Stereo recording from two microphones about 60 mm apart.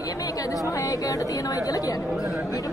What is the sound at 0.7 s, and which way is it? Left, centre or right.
A woman's voice, left.